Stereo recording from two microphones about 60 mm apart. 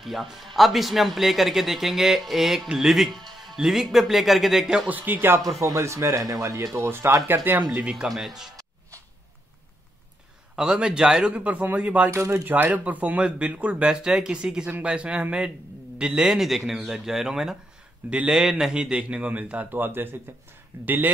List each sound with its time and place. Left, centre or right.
0.0 s speech: centre
4.8 s speech: right
5.6 s speech: right
7.5 s speech: right
8.0 s speech: centre
10.5 s speech: centre
11.2 s a man's voice: right
16.3 s a man's voice: centre; by 21.1 s right